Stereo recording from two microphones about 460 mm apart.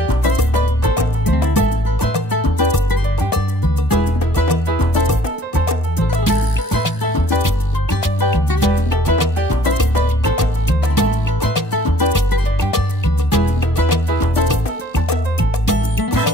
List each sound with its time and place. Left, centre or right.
0.3 s music: left
8.2 s music: left
15.6 s music: left